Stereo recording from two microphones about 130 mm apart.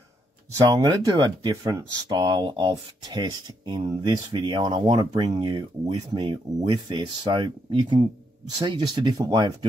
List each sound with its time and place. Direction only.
0.7 s speech: 30° right (ahead or behind)